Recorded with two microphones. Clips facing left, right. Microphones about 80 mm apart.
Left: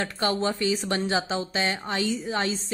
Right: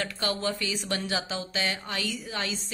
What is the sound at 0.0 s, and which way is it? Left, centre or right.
Speech, left.